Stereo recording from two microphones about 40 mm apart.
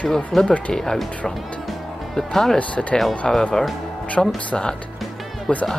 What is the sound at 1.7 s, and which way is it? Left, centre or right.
Music, centre.